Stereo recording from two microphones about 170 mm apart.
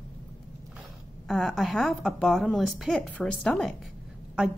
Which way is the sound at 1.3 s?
Centre (ahead or behind).